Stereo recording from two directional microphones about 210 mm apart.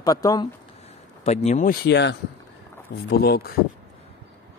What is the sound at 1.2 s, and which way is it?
Speech, 35° left (ahead or behind).